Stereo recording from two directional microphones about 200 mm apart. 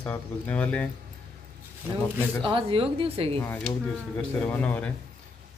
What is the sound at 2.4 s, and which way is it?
Speech, 25° right (ahead or behind).